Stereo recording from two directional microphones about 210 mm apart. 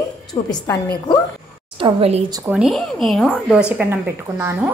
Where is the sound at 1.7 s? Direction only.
25° right (ahead or behind).